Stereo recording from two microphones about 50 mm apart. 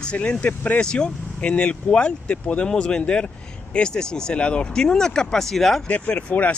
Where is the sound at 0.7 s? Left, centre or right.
Centre.